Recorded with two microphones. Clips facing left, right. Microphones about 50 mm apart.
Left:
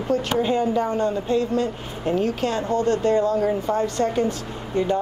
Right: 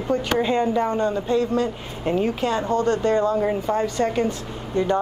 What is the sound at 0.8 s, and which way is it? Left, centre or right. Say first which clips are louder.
Speech: right 1 dB; right.